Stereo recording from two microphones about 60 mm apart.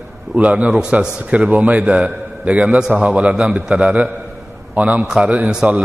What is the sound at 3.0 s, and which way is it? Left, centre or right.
A man's voice, right.